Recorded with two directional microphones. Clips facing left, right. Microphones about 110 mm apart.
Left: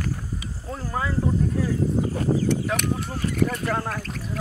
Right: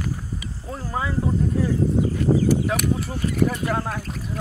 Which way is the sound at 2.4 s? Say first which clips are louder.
Right 3 dB; 5° right (ahead or behind).